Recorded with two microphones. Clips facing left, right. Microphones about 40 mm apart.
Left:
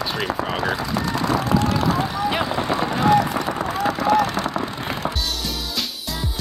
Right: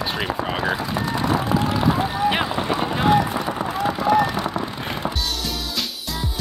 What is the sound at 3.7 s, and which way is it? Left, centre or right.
Vehicle, left.